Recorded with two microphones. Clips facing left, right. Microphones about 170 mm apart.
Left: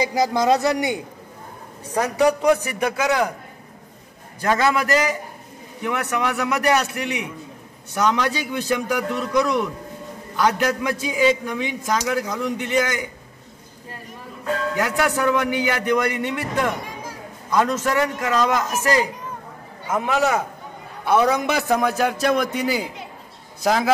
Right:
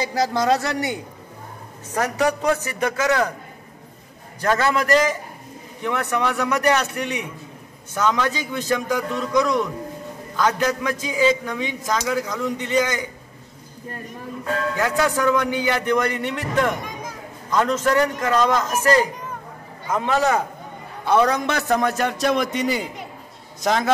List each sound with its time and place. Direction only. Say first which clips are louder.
0.0 s a man's voice: left 2 dB; 15° left (ahead or behind)
4.4 s a man's voice: even; 10° left (ahead or behind)
14.8 s a man's voice: right 1 dB; 10° left (ahead or behind)